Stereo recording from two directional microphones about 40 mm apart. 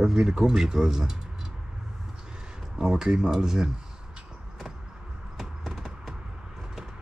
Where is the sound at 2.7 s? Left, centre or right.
Centre.